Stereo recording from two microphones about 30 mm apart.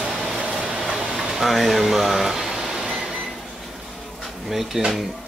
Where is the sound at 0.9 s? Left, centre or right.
Right.